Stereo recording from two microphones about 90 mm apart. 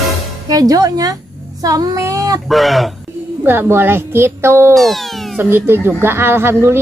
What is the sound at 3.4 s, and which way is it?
A woman's voice, 25° right (ahead or behind).